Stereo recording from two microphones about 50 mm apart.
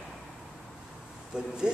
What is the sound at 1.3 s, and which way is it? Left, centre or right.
Speech, centre.